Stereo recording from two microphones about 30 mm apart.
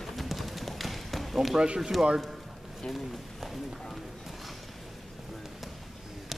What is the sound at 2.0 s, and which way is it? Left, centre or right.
Speech, right.